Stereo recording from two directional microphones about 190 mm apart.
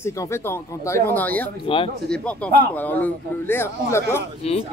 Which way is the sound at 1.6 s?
30° left (ahead or behind).